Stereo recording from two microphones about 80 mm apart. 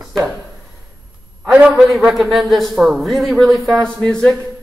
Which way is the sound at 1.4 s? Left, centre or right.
Centre.